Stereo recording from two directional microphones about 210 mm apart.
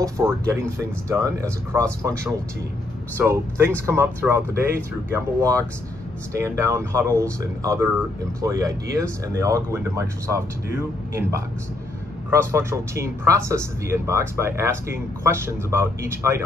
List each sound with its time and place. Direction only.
0.0 s speech: 10° right (ahead or behind)
8.4 s speech: 15° right (ahead or behind)